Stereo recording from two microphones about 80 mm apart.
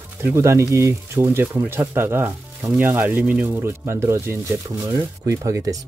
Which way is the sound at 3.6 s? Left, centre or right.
Right.